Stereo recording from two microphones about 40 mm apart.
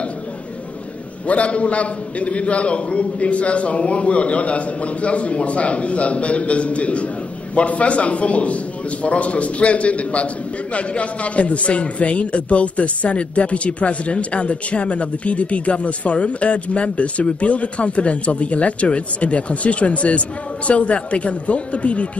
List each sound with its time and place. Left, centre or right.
1.2 s a man's voice: left